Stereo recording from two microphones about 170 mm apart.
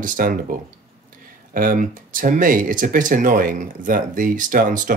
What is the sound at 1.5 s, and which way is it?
Speech, 55° right (ahead or behind).